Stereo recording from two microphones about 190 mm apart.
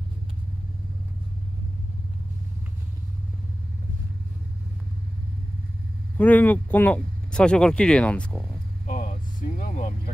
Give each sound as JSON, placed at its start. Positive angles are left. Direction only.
{"t": 6.1, "sound": "speech", "side_deg": 10}
{"t": 8.8, "sound": "vehicle", "side_deg": 40}